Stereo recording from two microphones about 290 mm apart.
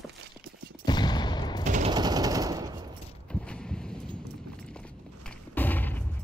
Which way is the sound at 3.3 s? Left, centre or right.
Centre.